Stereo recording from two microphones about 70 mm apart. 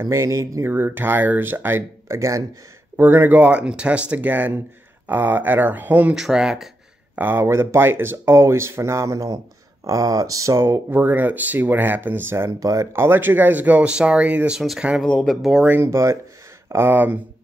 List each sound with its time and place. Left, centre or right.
0.0 s speech: right
0.7 s speech: right
2.1 s speech: right
3.0 s speech: right
6.1 s speech: centre
7.2 s speech: right
12.4 s speech: right
12.9 s speech: right
15.0 s speech: centre
15.8 s speech: right